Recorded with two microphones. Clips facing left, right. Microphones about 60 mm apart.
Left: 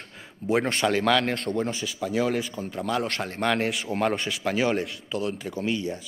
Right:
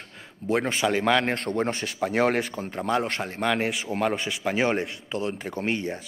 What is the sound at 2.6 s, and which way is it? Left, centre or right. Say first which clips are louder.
Speech: right 2 dB; right.